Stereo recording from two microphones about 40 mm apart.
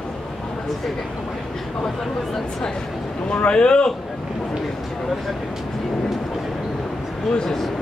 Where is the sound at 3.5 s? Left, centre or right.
Left.